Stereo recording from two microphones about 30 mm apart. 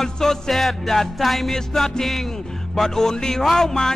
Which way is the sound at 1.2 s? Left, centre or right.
Centre.